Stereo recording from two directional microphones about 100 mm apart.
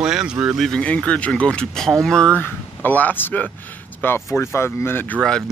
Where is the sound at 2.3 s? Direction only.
20° left (ahead or behind).